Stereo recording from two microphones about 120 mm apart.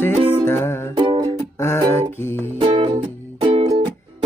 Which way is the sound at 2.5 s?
50° right (ahead or behind).